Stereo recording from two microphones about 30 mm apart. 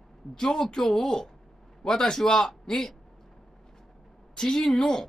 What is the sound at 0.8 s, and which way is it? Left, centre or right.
A man's voice, centre.